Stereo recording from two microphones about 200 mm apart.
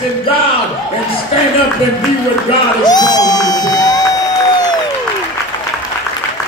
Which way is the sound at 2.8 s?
20° left (ahead or behind).